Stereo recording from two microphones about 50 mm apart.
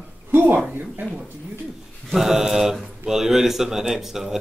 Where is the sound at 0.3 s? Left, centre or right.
Right.